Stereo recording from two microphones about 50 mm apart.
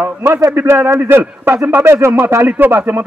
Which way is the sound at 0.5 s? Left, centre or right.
Right.